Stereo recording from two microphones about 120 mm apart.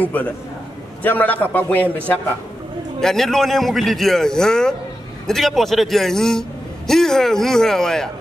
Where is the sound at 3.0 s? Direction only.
5° left (ahead or behind).